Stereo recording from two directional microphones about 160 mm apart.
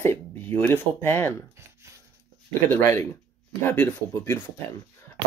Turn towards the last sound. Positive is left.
turn(degrees=15)  # may be behind; listen again after turning